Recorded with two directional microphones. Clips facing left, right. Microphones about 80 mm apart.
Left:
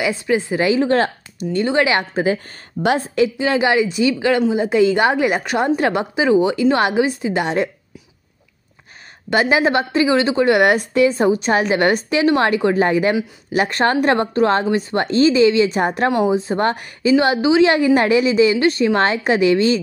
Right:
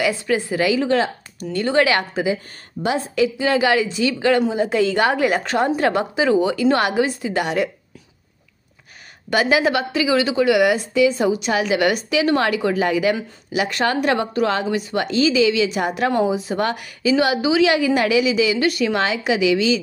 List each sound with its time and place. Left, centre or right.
0.0 s a woman's voice: left
2.8 s a woman's voice: left
3.3 s a woman's voice: left
9.3 s a woman's voice: left